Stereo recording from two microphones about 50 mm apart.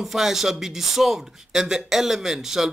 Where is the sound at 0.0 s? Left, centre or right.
Centre.